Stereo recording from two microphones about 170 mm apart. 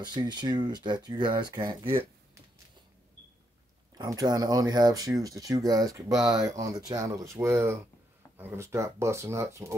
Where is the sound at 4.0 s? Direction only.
20° right (ahead or behind).